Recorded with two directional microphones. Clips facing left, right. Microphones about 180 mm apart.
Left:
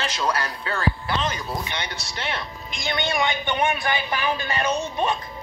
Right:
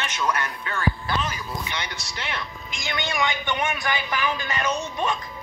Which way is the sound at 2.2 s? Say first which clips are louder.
Left 3 dB; 30° left (ahead or behind).